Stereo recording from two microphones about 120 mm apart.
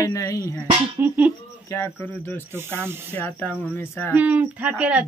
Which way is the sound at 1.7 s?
15° left (ahead or behind).